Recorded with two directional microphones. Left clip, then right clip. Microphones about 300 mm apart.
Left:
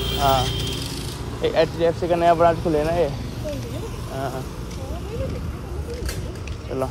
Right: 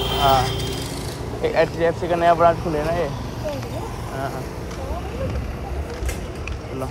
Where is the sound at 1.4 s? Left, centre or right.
Centre.